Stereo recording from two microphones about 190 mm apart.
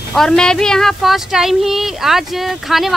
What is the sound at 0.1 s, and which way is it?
Speech, centre (ahead or behind).